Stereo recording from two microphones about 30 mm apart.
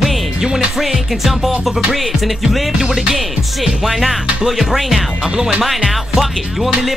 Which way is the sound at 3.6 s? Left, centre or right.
Centre.